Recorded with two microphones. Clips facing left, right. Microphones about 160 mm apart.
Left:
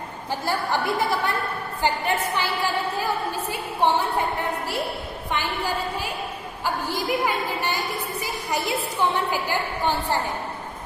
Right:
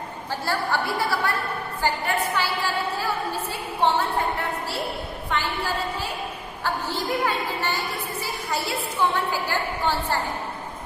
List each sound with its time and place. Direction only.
0.5 s a woman's voice: 20° left (ahead or behind)
2.3 s a sound: 15° left (ahead or behind)
6.6 s a woman's voice: 10° left (ahead or behind)